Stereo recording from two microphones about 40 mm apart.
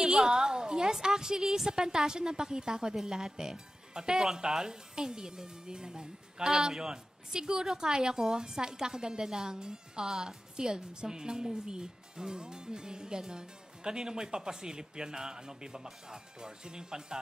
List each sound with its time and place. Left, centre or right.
0.0 s a woman's voice: centre